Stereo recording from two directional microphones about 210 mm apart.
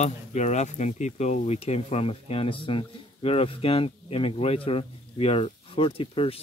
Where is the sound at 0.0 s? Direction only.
35° left (ahead or behind).